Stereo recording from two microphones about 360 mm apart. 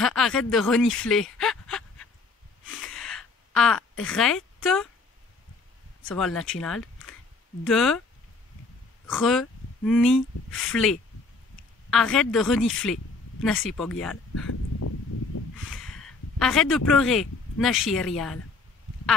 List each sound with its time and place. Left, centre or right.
0.0 s speech: centre
2.8 s a sound: centre
4.1 s a woman's voice: centre
6.1 s speech: centre
9.1 s speech: centre
14.3 s dog: left
15.5 s speech: centre